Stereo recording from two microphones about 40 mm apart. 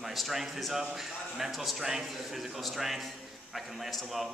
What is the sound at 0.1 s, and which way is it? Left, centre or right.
A man's voice, centre.